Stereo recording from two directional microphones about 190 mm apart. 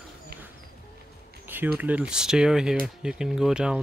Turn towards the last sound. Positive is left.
turn(degrees=-5)  # may be behind; listen again after turning